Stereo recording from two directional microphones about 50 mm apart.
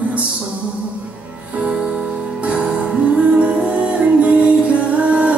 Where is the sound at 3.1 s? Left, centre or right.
Right.